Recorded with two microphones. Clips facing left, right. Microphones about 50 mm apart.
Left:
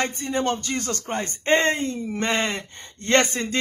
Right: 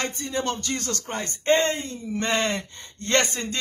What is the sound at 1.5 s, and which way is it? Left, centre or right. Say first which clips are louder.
Speech: left 1 dB; left.